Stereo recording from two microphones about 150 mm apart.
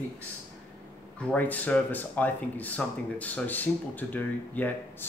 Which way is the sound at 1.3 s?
10° left (ahead or behind).